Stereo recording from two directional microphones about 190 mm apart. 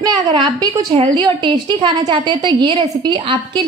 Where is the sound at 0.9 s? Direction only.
25° right (ahead or behind).